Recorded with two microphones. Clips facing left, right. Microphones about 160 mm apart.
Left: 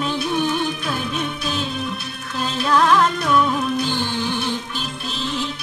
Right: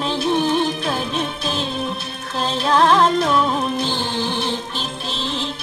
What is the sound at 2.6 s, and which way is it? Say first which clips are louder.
Music: right 1 dB; 30° right (ahead or behind).